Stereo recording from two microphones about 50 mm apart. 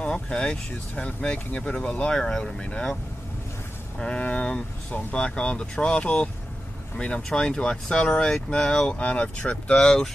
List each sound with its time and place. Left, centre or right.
0.0 s speech: left
4.0 s speech: left
8.8 s speech: left
9.8 s speech: centre